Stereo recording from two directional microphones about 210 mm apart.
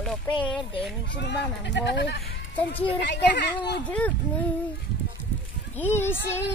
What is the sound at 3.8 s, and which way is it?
Speech, 5° left (ahead or behind).